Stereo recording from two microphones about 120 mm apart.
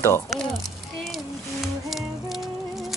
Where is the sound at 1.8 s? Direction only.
Centre (ahead or behind).